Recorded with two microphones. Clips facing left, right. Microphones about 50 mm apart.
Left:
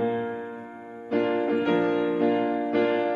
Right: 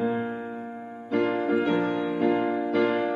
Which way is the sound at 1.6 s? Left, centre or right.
Left.